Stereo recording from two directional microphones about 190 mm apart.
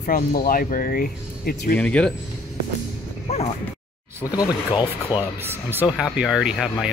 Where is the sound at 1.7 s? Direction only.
5° left (ahead or behind).